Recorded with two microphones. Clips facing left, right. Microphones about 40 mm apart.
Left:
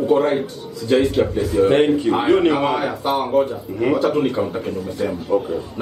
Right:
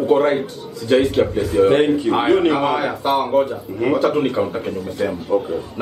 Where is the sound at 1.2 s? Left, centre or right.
Right.